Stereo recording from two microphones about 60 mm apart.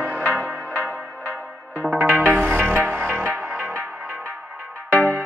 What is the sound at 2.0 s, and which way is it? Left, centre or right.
Music, right.